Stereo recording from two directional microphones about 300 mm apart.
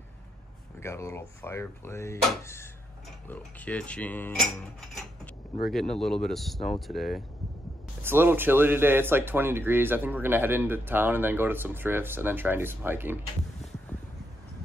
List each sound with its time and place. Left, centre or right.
0.7 s speech: centre